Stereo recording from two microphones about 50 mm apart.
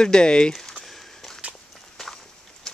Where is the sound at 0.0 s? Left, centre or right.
Centre.